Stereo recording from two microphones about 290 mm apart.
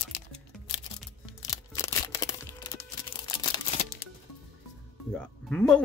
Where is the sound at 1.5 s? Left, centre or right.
Centre.